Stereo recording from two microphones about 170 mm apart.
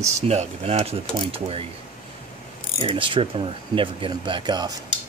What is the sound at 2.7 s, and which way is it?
Speech, 30° right (ahead or behind).